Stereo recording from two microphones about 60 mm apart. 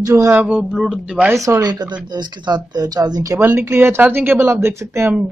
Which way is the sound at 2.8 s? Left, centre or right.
Right.